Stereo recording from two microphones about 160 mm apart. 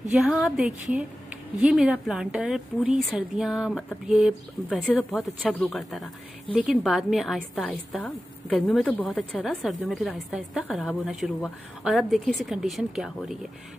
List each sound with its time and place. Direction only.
0.1 s a woman's voice: centre (ahead or behind)